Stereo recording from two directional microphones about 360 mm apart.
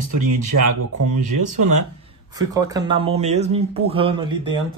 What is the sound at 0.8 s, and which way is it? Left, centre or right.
Speech, right.